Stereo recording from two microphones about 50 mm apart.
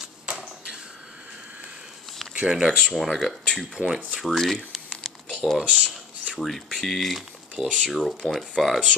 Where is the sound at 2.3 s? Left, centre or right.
Centre.